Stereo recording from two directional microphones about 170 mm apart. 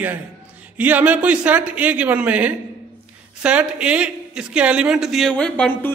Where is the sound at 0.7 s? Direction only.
10° right (ahead or behind).